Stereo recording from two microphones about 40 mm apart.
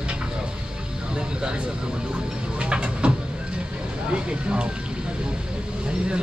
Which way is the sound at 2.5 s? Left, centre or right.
Right.